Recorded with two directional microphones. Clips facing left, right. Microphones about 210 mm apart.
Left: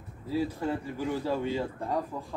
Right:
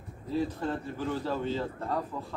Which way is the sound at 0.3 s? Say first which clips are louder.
Left 1 dB; 10° left (ahead or behind).